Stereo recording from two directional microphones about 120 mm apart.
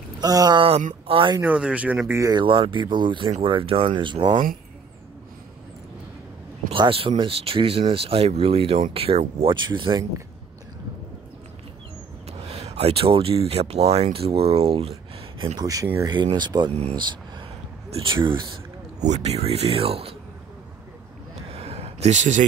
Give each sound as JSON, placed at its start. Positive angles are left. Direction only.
{"t": 0.2, "sound": "speech", "side_deg": -30}
{"t": 0.6, "sound": "speech", "side_deg": -55}
{"t": 1.4, "sound": "speech", "side_deg": -10}
{"t": 2.1, "sound": "speech", "side_deg": -30}
{"t": 2.4, "sound": "speech", "side_deg": -45}
{"t": 6.7, "sound": "speech", "side_deg": -50}
{"t": 9.5, "sound": "speech", "side_deg": -40}
{"t": 12.3, "sound": "speech", "side_deg": -60}
{"t": 15.6, "sound": "speech", "side_deg": -30}
{"t": 18.1, "sound": "speech", "side_deg": -45}
{"t": 18.9, "sound": "speech", "side_deg": -70}
{"t": 21.5, "sound": "a sound", "side_deg": -55}